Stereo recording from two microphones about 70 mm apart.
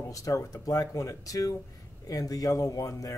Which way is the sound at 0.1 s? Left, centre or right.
Left.